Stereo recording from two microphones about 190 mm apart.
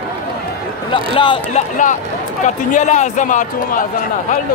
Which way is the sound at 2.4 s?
40° left (ahead or behind).